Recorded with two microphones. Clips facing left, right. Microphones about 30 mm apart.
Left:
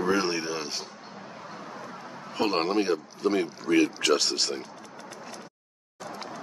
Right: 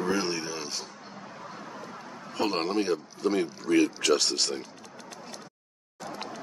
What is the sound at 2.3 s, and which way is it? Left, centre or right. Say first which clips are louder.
Speech: left 2 dB; centre.